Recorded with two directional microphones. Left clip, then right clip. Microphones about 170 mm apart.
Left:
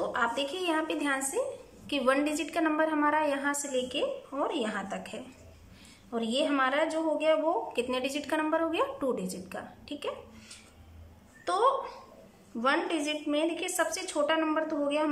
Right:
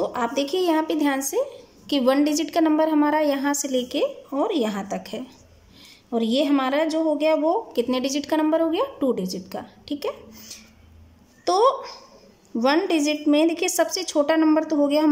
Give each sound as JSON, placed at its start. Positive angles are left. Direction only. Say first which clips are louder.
{"t": 0.0, "sound": "a woman's voice", "louder": "right 5 dB", "side_deg": -25}